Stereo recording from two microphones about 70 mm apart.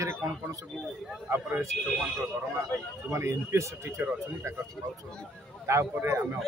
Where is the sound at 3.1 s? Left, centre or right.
Right.